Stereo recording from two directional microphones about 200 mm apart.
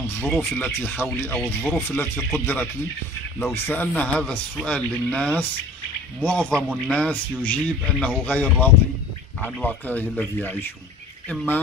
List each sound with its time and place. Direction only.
0.3 s speech: 5° left (ahead or behind)